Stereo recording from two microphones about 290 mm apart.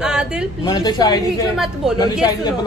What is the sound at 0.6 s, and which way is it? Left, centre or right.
Speech, centre.